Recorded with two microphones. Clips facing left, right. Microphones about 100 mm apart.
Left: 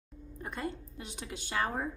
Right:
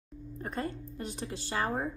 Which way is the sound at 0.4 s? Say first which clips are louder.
Right 2 dB; 40° right (ahead or behind).